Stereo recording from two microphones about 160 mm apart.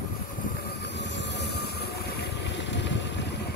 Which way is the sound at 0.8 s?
90° left.